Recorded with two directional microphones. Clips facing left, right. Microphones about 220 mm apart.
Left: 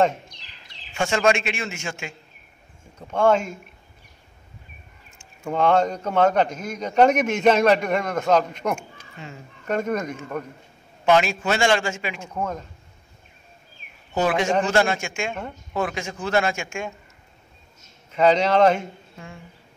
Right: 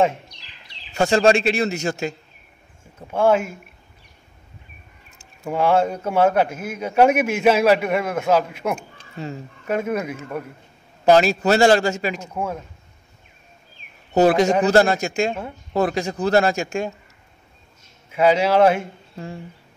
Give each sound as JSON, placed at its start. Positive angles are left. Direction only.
{"t": 0.9, "sound": "a man's voice", "side_deg": -35}
{"t": 3.0, "sound": "a man's voice", "side_deg": -5}
{"t": 5.4, "sound": "a man's voice", "side_deg": -5}
{"t": 9.2, "sound": "a man's voice", "side_deg": -35}
{"t": 9.7, "sound": "a man's voice", "side_deg": -5}
{"t": 11.1, "sound": "a man's voice", "side_deg": -35}
{"t": 12.4, "sound": "a man's voice", "side_deg": -10}
{"t": 14.1, "sound": "a man's voice", "side_deg": -40}
{"t": 18.1, "sound": "a man's voice", "side_deg": -10}
{"t": 19.1, "sound": "speech", "side_deg": -35}